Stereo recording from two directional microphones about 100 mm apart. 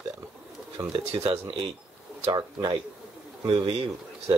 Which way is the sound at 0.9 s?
65° right (ahead or behind).